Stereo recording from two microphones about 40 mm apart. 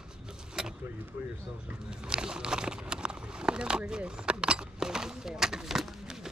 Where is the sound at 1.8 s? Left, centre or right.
Right.